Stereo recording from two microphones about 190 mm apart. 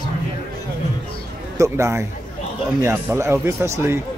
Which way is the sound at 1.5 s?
15° right (ahead or behind).